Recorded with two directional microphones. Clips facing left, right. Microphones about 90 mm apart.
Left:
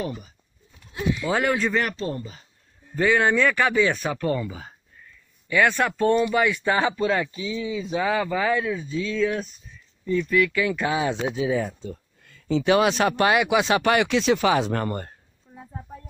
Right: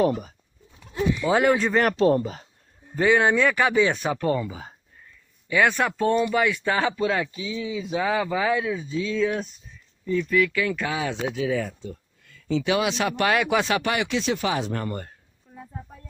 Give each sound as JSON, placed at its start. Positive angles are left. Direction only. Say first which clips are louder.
{"t": 0.0, "sound": "speech", "louder": "right 9 dB", "side_deg": -60}
{"t": 1.2, "sound": "speech", "louder": "right 3 dB", "side_deg": -20}
{"t": 2.0, "sound": "speech", "louder": "right 10 dB", "side_deg": -80}
{"t": 3.0, "sound": "speech", "louder": "right 1 dB", "side_deg": -20}
{"t": 10.0, "sound": "speech", "louder": "left 1 dB", "side_deg": 0}
{"t": 10.8, "sound": "speech", "louder": "left 3 dB", "side_deg": 25}
{"t": 12.3, "sound": "speech", "louder": "left 3 dB", "side_deg": 35}
{"t": 13.3, "sound": "speech", "louder": "left 2 dB", "side_deg": 15}
{"t": 13.8, "sound": "speech", "louder": "left 5 dB", "side_deg": 65}
{"t": 14.9, "sound": "speech", "louder": "left 2 dB", "side_deg": 40}